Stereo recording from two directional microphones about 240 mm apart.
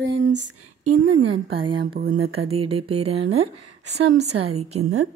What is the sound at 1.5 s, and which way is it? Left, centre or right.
Speech, right.